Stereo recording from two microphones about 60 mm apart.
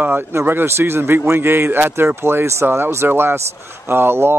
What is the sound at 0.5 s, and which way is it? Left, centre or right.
Speech, right.